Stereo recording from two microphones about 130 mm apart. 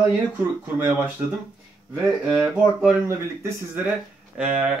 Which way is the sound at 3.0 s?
20° right (ahead or behind).